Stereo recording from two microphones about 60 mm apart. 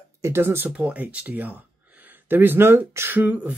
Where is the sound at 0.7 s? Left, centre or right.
Right.